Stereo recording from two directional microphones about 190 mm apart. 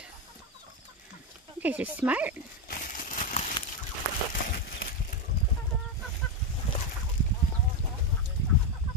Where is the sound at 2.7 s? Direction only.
45° left (ahead or behind).